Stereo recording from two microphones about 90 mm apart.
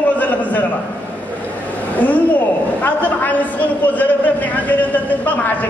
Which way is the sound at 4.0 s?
20° left (ahead or behind).